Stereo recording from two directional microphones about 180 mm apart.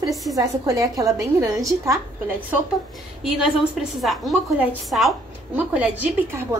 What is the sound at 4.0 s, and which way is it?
A woman's voice, centre (ahead or behind).